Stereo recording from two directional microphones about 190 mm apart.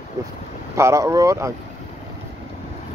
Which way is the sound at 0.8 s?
15° right (ahead or behind).